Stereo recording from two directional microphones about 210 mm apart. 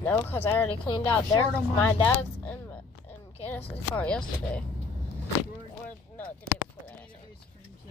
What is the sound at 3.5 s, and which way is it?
Speech, 5° left (ahead or behind).